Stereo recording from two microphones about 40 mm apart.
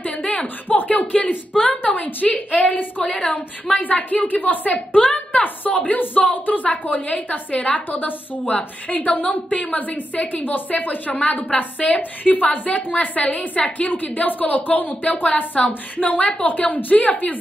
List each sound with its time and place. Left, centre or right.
0.2 s a sound: left
0.7 s a woman's voice: left
4.7 s a woman's voice: left